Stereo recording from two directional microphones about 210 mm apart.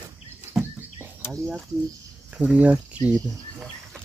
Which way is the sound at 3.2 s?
Centre (ahead or behind).